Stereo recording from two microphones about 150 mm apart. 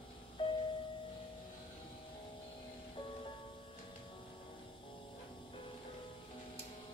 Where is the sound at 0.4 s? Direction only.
35° left (ahead or behind).